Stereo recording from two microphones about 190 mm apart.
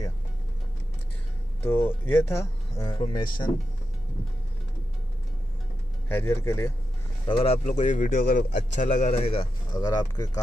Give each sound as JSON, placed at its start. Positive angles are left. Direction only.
{"t": 1.6, "sound": "speech", "side_deg": 10}
{"t": 6.0, "sound": "speech", "side_deg": 15}
{"t": 7.2, "sound": "a man's voice", "side_deg": 30}
{"t": 9.8, "sound": "speech", "side_deg": 20}